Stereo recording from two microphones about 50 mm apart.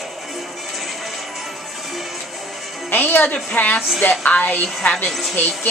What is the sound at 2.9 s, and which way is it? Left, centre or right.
Speech, left.